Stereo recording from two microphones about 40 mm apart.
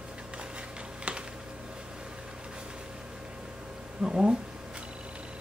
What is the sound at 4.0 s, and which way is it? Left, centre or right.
Speech, centre.